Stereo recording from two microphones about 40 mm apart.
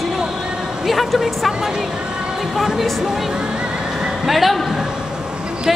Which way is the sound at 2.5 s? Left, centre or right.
Centre.